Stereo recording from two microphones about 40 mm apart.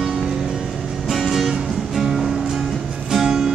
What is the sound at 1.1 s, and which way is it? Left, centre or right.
Music, centre.